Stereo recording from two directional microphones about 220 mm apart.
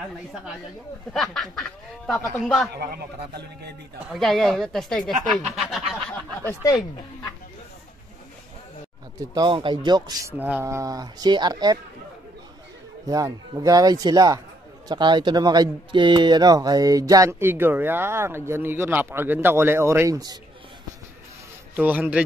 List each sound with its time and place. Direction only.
0.0 s speech: centre (ahead or behind)
4.1 s speech: centre (ahead or behind)
6.4 s speech: 15° left (ahead or behind)
9.3 s speech: 20° right (ahead or behind)
10.3 s speech: 5° right (ahead or behind)
13.0 s speech: 15° right (ahead or behind)
21.7 s speech: 5° right (ahead or behind)